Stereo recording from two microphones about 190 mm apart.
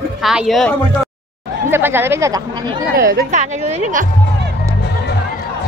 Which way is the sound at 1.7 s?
10° right (ahead or behind).